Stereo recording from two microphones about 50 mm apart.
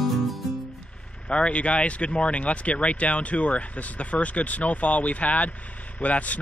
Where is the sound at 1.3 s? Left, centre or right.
Left.